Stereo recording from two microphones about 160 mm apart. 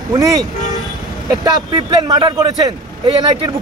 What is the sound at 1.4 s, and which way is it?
Speech, 25° right (ahead or behind).